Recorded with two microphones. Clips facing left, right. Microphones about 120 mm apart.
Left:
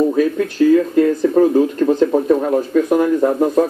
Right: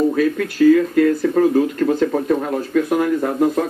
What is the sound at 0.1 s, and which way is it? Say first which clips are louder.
Speech: left 2 dB; 25° left (ahead or behind).